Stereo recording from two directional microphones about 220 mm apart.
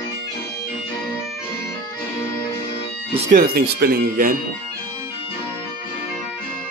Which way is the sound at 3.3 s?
40° right (ahead or behind).